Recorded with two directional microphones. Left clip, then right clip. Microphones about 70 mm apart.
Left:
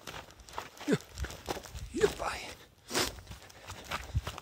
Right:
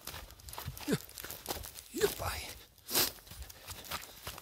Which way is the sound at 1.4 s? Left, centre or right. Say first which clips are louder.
Left 3 dB; right.